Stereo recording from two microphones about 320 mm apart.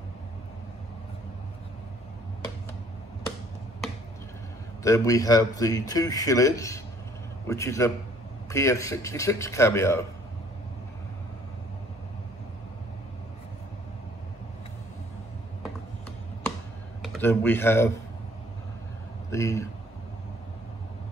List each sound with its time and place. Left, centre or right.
4.8 s speech: centre
17.0 s speech: centre
19.3 s speech: centre